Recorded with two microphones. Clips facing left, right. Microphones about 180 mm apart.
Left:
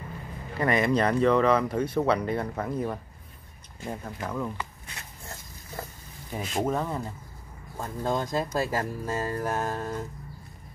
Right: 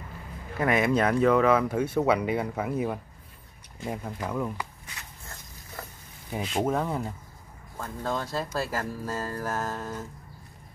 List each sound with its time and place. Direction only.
0.6 s speech: 5° right (ahead or behind)
6.3 s speech: 5° right (ahead or behind)
7.7 s speech: 20° left (ahead or behind)